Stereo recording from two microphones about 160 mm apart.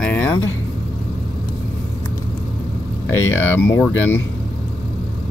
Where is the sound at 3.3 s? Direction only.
15° left (ahead or behind).